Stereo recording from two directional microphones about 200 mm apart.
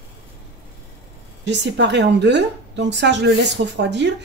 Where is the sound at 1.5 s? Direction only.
60° right (ahead or behind).